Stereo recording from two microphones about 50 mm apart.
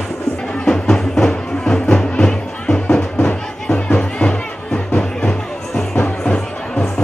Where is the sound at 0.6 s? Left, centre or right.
Centre.